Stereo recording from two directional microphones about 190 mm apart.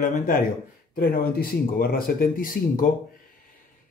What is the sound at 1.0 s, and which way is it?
Speech, 55° left (ahead or behind).